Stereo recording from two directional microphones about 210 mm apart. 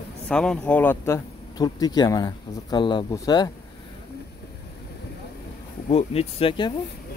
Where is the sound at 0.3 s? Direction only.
5° left (ahead or behind).